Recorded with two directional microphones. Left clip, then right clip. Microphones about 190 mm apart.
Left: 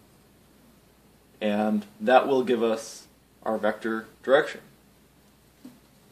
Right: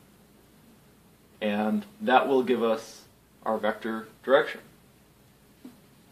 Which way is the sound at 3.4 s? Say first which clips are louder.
Left 1 dB; 35° left (ahead or behind).